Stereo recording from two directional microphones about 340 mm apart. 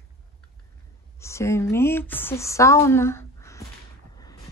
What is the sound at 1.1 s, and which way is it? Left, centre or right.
Speech, centre.